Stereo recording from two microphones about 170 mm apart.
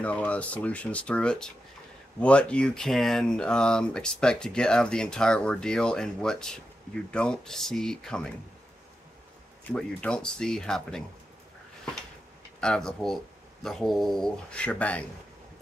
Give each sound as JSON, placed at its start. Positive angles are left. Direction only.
{"t": 0.0, "sound": "speech", "side_deg": 10}
{"t": 9.7, "sound": "speech", "side_deg": 5}
{"t": 12.5, "sound": "speech", "side_deg": 5}